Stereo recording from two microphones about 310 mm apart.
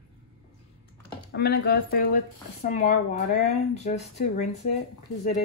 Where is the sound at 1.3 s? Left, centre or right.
Left.